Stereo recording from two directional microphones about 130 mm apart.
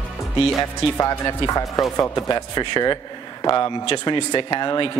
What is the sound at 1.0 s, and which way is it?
A man's voice, 25° left (ahead or behind).